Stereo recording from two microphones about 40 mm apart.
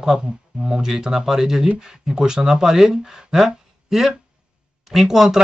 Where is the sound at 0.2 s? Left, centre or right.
Centre.